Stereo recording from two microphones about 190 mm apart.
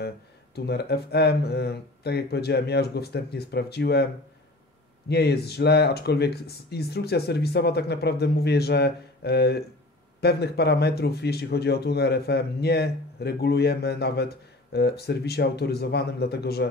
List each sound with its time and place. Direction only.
0.6 s a man's voice: 60° left (ahead or behind)